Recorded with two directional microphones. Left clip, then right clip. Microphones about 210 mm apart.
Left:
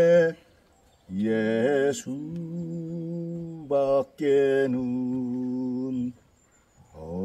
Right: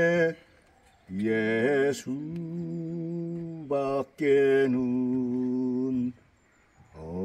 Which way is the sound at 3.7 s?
10° left (ahead or behind).